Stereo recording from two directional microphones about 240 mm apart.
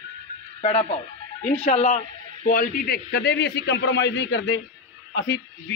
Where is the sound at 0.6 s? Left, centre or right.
Left.